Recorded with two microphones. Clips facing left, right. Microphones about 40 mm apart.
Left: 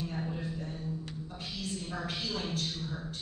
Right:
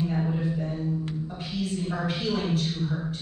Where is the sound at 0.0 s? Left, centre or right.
Right.